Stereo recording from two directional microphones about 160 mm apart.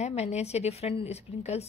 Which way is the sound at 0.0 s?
45° left (ahead or behind).